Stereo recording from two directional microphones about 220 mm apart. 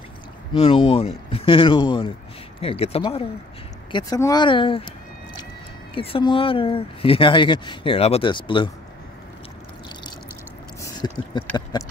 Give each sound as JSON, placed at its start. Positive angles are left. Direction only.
{"t": 0.5, "sound": "speech", "side_deg": 25}
{"t": 5.9, "sound": "speech", "side_deg": 25}
{"t": 10.8, "sound": "squish", "side_deg": 20}